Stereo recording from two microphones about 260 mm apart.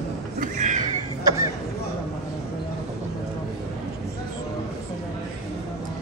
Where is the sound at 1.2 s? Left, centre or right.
Centre.